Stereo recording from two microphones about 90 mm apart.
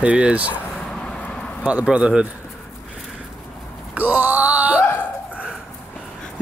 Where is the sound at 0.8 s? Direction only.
10° left (ahead or behind).